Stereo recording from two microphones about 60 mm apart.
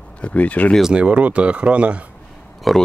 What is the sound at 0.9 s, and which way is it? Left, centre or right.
Speech, right.